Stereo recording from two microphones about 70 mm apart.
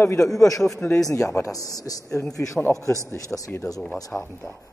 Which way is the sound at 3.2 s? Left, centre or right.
Left.